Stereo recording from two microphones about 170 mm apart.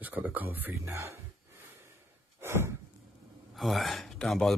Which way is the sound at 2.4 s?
15° right (ahead or behind).